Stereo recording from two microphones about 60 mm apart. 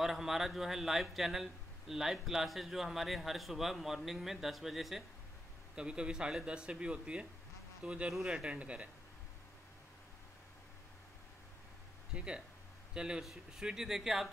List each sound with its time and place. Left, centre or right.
0.0 s speech: centre
5.8 s speech: centre
12.2 s speech: centre